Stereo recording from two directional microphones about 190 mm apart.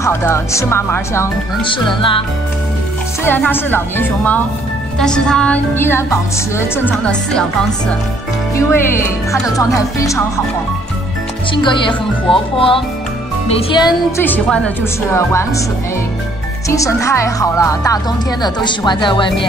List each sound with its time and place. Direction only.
0.0 s speech: 15° left (ahead or behind)
1.6 s speech: 25° left (ahead or behind)
3.3 s speech: 10° left (ahead or behind)
8.5 s speech: 15° left (ahead or behind)
11.5 s speech: 25° left (ahead or behind)
14.2 s speech: 10° left (ahead or behind)
16.6 s speech: 15° left (ahead or behind)